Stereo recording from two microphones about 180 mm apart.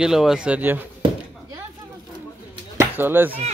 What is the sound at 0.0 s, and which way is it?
Speech, centre (ahead or behind).